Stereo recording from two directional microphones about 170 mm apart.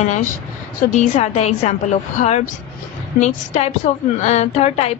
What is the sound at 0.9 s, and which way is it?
A woman's voice, 40° left (ahead or behind).